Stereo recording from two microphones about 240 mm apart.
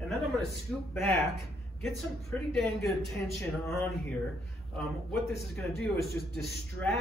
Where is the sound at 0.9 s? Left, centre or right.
Centre.